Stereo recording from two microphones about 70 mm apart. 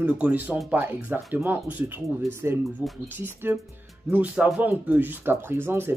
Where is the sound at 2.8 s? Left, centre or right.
Right.